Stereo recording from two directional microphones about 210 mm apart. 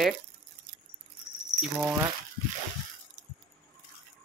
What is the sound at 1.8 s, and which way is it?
Speech, 5° right (ahead or behind).